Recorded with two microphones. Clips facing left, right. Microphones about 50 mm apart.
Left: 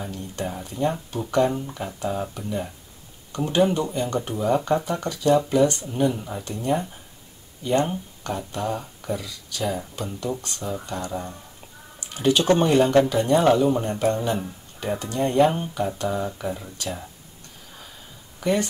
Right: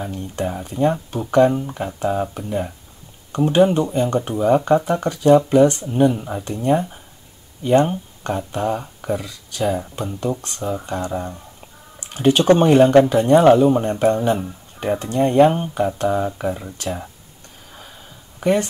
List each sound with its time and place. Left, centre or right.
0.0 s speech: right
18.4 s speech: right